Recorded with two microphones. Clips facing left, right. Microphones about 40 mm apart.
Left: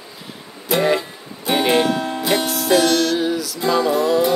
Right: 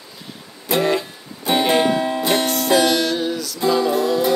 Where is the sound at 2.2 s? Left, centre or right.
Centre.